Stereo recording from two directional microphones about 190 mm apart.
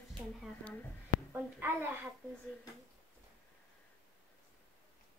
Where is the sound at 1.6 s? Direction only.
10° right (ahead or behind).